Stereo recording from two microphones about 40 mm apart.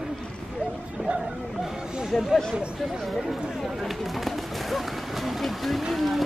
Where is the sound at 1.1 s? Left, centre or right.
Right.